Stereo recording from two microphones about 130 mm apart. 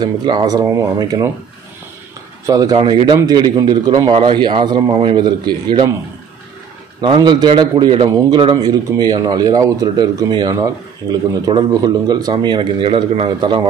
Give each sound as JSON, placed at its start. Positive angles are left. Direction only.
{"t": 0.0, "sound": "speech", "side_deg": -35}
{"t": 2.4, "sound": "speech", "side_deg": -25}
{"t": 2.8, "sound": "speech", "side_deg": -35}
{"t": 7.0, "sound": "speech", "side_deg": -35}